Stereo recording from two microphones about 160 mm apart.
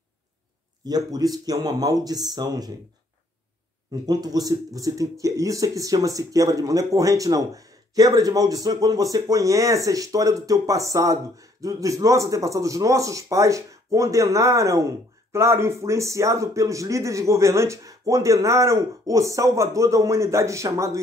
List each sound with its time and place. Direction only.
0.8 s speech: 25° right (ahead or behind)
4.0 s speech: 25° right (ahead or behind)